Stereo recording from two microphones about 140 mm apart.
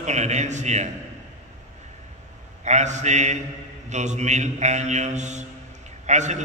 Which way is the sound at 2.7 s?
55° right (ahead or behind).